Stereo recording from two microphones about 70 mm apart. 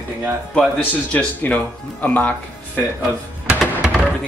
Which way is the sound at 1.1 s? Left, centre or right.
Centre.